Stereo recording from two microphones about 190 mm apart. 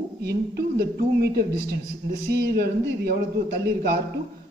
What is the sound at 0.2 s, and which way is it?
A man's voice, 60° right (ahead or behind).